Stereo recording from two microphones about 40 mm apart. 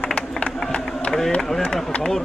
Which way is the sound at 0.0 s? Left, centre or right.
Left.